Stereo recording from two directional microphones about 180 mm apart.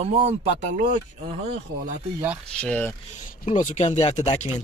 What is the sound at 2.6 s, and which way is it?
Speech, 10° left (ahead or behind).